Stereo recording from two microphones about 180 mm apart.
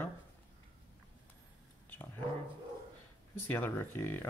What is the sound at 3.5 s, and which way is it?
Speech, 10° left (ahead or behind).